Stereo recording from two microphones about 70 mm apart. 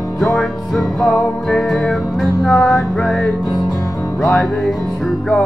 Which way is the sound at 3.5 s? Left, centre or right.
Left.